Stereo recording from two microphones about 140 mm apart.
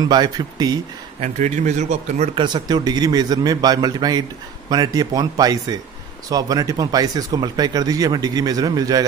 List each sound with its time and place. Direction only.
0.0 s speech: 30° right (ahead or behind)
1.2 s speech: 60° right (ahead or behind)
2.3 s speech: 30° right (ahead or behind)